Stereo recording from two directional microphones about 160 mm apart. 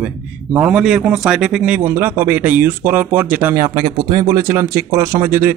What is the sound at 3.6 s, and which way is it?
Speech, 25° right (ahead or behind).